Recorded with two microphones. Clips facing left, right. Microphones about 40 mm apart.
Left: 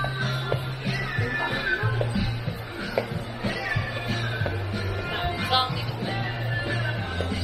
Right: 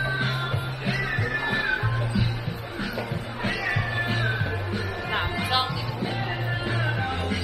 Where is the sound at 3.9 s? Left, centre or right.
Right.